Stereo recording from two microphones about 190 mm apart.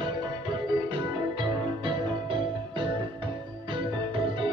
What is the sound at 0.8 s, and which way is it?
Music, 25° right (ahead or behind).